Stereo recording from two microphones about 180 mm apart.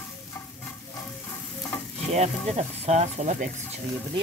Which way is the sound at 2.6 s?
40° right (ahead or behind).